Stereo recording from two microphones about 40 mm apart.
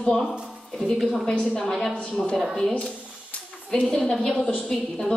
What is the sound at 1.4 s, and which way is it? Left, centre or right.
Speech, centre.